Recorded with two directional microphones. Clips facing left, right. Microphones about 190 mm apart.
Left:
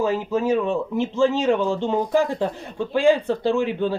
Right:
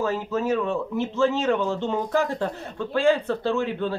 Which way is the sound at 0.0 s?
15° left (ahead or behind).